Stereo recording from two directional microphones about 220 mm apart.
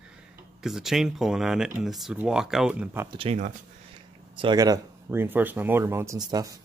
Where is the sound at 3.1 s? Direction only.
30° right (ahead or behind).